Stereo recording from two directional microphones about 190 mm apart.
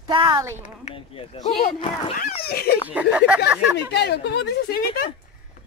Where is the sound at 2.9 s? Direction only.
5° right (ahead or behind).